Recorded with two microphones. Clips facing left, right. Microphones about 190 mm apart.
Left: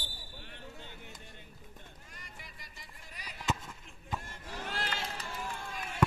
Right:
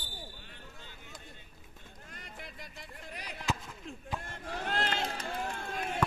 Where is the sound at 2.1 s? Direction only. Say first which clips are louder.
Right 9 dB; 55° right (ahead or behind).